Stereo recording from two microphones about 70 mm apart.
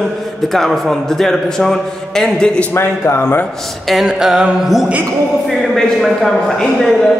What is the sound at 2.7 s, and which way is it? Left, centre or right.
Speech, left.